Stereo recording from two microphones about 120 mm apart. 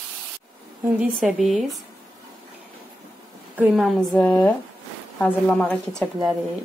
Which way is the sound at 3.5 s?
15° right (ahead or behind).